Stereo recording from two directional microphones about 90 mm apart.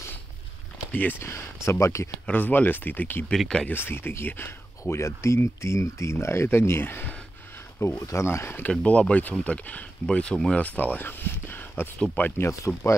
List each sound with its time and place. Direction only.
0.9 s speech: 20° left (ahead or behind)
2.2 s speech: 20° left (ahead or behind)
3.3 s speech: 10° left (ahead or behind)
3.6 s speech: 25° left (ahead or behind)
8.1 s speech: 30° left (ahead or behind)
12.4 s speech: 35° left (ahead or behind)